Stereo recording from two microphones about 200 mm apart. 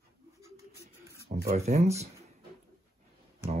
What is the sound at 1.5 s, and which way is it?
Speech, 35° right (ahead or behind).